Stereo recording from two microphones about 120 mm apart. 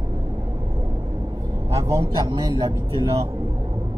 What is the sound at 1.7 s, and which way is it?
Speech, 25° right (ahead or behind).